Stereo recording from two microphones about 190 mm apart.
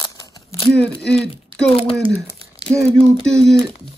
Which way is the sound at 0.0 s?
20° left (ahead or behind).